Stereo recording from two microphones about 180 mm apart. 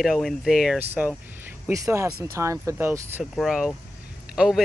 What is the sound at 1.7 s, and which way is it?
Speech, 15° right (ahead or behind).